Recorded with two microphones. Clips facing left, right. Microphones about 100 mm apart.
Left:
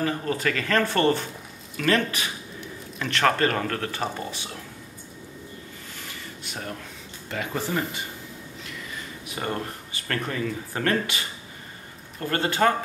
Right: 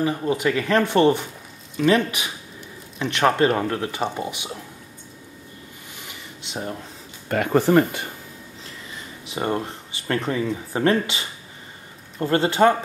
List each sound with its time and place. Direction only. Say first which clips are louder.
0.0 s speech: right 4 dB; 15° right (ahead or behind)
5.9 s a sound: even; 20° right (ahead or behind)
7.2 s speech: right 11 dB; 55° right (ahead or behind)
9.2 s speech: right 6 dB; 25° right (ahead or behind)